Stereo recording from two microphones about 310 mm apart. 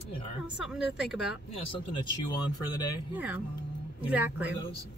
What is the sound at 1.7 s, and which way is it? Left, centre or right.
Speech, centre.